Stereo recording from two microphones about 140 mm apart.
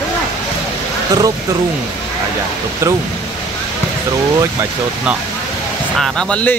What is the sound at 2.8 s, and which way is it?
Speech, 20° right (ahead or behind).